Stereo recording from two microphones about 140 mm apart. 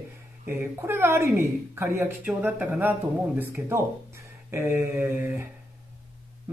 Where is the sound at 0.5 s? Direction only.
20° right (ahead or behind).